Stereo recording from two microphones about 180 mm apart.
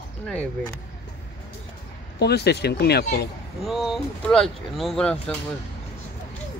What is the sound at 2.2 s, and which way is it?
Speech, 65° left (ahead or behind).